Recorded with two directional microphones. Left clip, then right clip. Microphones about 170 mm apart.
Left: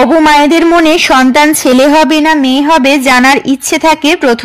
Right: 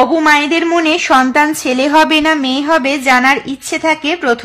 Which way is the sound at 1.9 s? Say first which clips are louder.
Left 3 dB; 25° left (ahead or behind).